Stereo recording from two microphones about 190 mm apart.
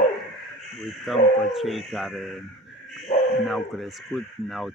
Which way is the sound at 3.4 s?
Centre (ahead or behind).